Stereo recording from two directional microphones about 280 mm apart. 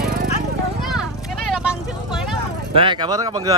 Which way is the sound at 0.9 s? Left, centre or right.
Centre.